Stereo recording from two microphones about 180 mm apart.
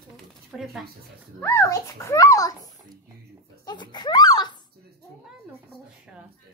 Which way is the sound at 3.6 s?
25° left (ahead or behind).